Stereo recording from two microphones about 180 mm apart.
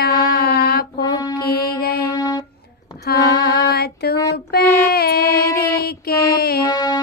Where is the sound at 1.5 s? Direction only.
60° left (ahead or behind).